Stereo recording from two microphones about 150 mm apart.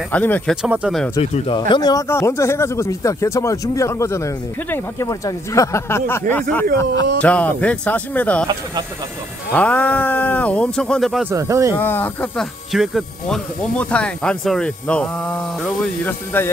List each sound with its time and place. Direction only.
0.1 s speech: 10° left (ahead or behind)
0.6 s speech: 5° right (ahead or behind)
1.1 s speech: 45° left (ahead or behind); by 8.5 s 10° left (ahead or behind)
9.5 s speech: 10° left (ahead or behind)
11.2 s speech: 20° right (ahead or behind)
11.7 s speech: 15° left (ahead or behind)